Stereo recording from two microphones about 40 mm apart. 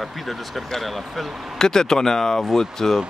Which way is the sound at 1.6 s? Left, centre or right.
Centre.